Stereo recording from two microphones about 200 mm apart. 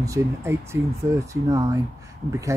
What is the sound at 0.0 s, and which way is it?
Speech, 15° right (ahead or behind).